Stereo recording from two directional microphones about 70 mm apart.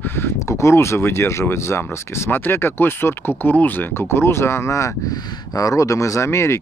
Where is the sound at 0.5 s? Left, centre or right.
Left.